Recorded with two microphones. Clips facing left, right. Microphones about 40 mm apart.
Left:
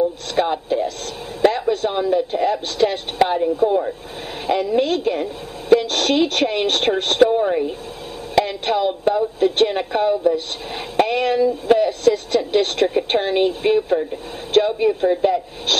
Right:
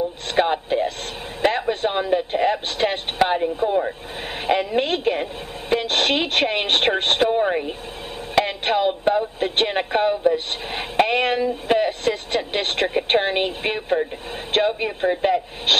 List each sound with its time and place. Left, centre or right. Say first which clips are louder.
0.3 s speech: even; right
3.6 s speech: left 3 dB; centre
4.5 s a woman's voice: left 2 dB; right